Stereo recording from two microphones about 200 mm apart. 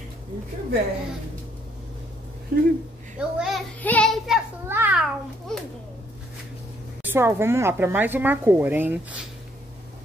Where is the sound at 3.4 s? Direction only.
5° left (ahead or behind).